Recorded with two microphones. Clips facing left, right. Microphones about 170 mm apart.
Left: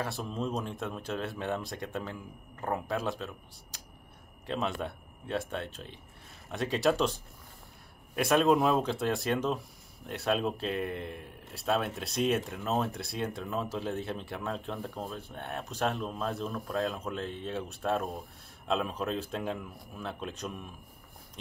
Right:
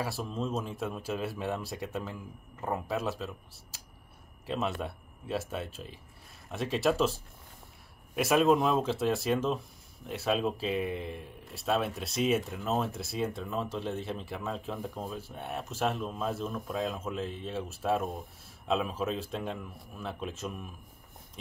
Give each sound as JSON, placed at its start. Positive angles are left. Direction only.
{"t": 0.0, "sound": "speech", "side_deg": 0}